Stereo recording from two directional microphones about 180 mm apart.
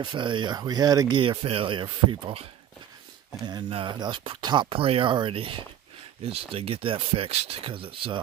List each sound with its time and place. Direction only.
0.0 s speech: 25° right (ahead or behind)
3.4 s speech: 25° right (ahead or behind)